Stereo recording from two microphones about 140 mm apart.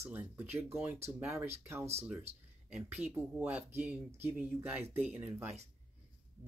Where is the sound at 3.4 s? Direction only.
15° right (ahead or behind).